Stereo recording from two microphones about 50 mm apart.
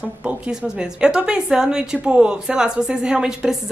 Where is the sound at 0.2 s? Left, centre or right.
Centre.